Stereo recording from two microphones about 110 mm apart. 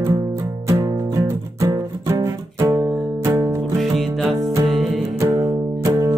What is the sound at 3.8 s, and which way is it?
Music, centre (ahead or behind).